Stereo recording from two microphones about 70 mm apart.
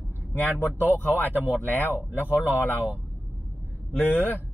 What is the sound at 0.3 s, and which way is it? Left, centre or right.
Speech, left.